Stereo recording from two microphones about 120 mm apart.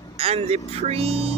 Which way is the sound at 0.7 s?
60° right (ahead or behind).